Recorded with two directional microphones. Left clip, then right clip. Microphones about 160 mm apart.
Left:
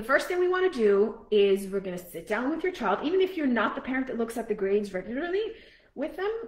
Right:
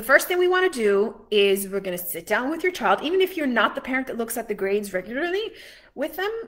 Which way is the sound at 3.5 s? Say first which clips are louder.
Right 6 dB; 20° right (ahead or behind).